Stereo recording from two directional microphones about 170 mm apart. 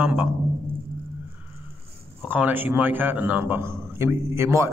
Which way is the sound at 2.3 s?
10° right (ahead or behind).